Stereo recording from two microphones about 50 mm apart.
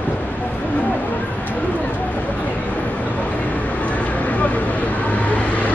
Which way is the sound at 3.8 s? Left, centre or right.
Left.